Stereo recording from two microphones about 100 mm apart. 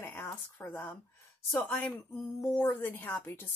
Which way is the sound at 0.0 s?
20° left (ahead or behind).